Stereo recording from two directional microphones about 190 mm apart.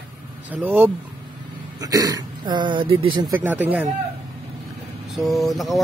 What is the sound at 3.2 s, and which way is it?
Speech, 10° right (ahead or behind).